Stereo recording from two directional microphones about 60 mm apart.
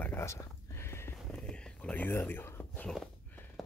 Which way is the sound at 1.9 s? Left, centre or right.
Left.